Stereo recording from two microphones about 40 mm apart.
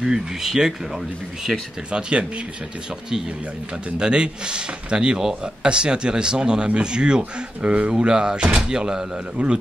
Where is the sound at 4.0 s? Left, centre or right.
Right.